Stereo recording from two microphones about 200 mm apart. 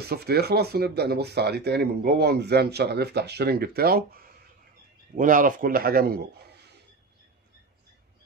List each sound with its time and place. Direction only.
0.0 s speech: 50° right (ahead or behind)